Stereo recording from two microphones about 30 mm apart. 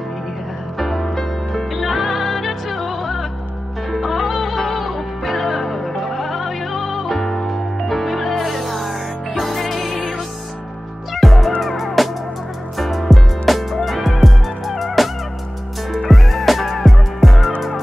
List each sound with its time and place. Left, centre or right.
0.7 s music: centre
7.1 s music: centre
7.4 s music: centre
11.1 s music: centre